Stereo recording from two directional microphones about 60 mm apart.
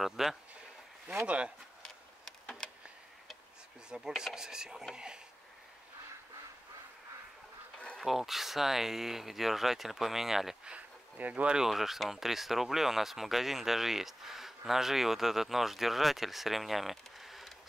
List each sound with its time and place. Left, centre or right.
0.0 s speech: centre
1.2 s speech: right
1.8 s a sound: centre
3.9 s speech: centre
8.0 s speech: centre
10.7 s a sound: right
11.5 s speech: centre